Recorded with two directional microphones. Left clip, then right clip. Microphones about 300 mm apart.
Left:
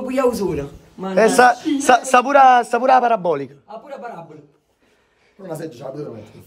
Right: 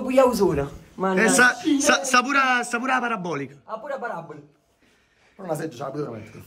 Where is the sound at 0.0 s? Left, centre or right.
Right.